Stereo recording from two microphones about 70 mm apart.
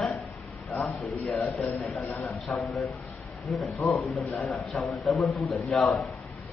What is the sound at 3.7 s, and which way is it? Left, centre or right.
Speech, left.